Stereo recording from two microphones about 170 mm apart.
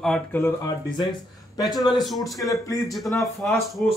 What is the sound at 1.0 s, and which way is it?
A man's voice, 25° left (ahead or behind).